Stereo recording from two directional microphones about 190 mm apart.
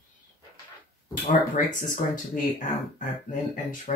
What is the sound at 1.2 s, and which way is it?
Speech, 45° left (ahead or behind).